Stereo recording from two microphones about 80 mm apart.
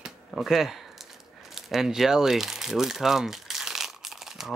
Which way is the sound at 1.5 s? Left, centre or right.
Centre.